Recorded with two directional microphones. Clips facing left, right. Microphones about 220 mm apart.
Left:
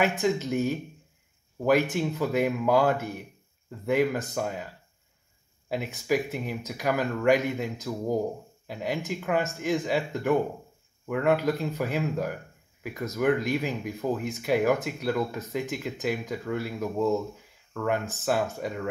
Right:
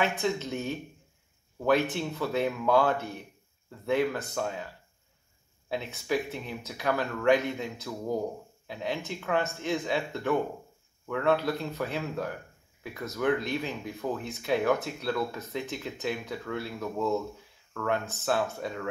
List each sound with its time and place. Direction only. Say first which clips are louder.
0.0 s speech: left 4 dB; 10° left (ahead or behind)
5.7 s speech: left 3 dB; 10° left (ahead or behind)